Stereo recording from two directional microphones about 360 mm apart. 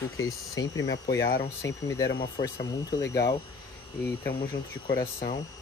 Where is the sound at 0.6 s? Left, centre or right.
Left.